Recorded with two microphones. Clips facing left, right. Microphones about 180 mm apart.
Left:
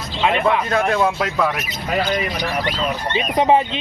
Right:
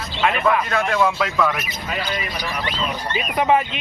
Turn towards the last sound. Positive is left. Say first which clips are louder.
# left 3 dB
turn(degrees=30)  # may be behind; listen again after turning